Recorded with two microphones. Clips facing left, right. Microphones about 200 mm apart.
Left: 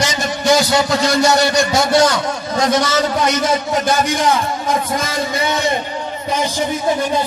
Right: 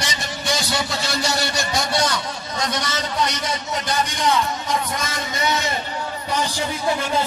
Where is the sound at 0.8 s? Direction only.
90° left.